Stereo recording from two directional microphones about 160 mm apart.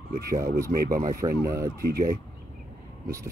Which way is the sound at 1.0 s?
20° right (ahead or behind).